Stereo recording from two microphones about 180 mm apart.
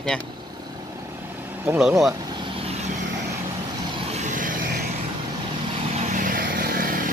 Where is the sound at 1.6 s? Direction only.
5° right (ahead or behind).